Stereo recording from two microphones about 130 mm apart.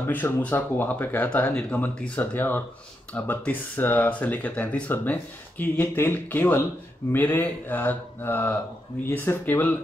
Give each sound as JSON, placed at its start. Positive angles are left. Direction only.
{"t": 0.0, "sound": "speech", "side_deg": 15}